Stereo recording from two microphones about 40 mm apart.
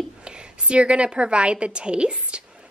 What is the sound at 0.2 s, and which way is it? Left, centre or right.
A woman's voice, right.